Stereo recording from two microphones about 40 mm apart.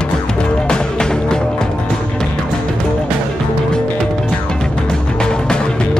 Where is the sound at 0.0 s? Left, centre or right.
Left.